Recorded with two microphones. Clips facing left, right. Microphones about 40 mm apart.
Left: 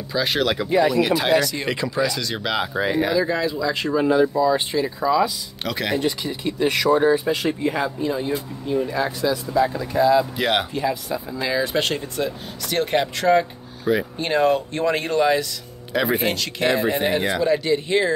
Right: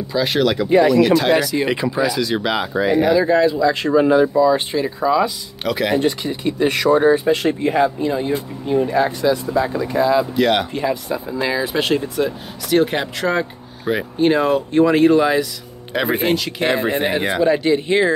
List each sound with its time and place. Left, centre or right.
0.1 s speech: centre
1.3 s speech: centre
3.1 s speech: right
5.6 s speech: centre
5.9 s speech: right
10.3 s speech: centre
10.7 s speech: right
11.5 s speech: centre
12.6 s speech: centre
15.9 s speech: right
16.2 s speech: centre
16.6 s speech: right